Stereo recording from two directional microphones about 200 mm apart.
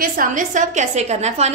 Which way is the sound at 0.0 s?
40° right (ahead or behind).